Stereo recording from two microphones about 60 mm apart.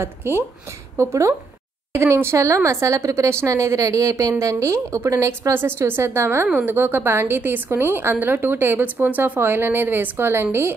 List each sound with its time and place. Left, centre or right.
0.0 s a woman's voice: right
0.9 s a woman's voice: right
5.6 s a woman's voice: right
6.4 s a woman's voice: right